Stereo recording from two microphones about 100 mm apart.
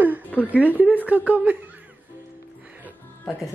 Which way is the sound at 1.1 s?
15° right (ahead or behind).